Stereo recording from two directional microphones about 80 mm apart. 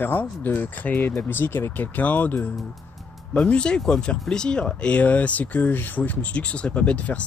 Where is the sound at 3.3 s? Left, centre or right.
Centre.